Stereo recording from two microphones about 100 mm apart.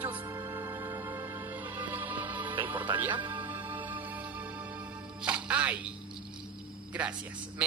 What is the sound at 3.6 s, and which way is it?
Music, 20° right (ahead or behind).